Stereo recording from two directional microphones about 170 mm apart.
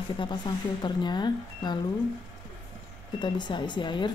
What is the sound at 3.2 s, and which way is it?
Speech, 25° left (ahead or behind).